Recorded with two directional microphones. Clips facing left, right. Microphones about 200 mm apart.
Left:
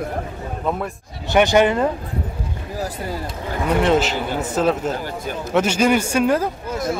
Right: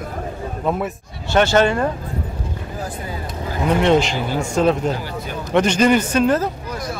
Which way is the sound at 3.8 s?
5° left (ahead or behind).